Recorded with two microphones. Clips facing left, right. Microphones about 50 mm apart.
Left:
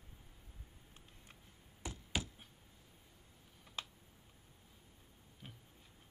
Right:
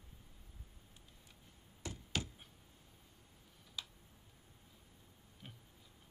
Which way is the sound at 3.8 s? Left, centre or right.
Left.